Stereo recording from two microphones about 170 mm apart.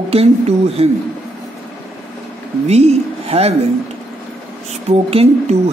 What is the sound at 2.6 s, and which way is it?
Speech, 40° right (ahead or behind).